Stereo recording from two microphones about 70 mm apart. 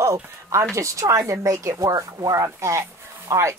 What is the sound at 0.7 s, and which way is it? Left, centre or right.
Speech, right.